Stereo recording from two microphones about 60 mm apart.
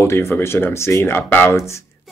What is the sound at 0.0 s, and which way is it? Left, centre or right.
Speech, left.